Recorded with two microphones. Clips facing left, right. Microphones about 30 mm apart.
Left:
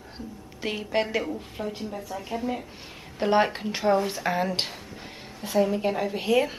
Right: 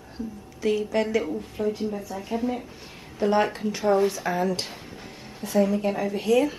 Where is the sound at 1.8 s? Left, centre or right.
Centre.